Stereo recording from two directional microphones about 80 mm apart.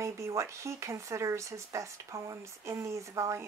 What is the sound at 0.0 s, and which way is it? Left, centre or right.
A woman's voice, right.